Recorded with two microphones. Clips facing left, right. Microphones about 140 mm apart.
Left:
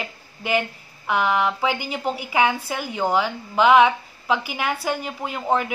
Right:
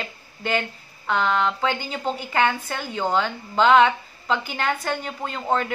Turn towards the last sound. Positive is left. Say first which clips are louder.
# left 1 dB
turn(degrees=10)  # may be behind; listen again after turning